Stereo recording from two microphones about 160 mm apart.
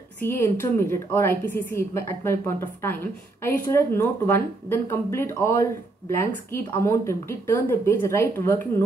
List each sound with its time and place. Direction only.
0.2 s a woman's voice: 15° left (ahead or behind)